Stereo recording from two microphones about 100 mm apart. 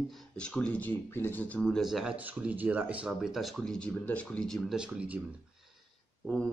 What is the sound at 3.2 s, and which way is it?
Speech, centre (ahead or behind).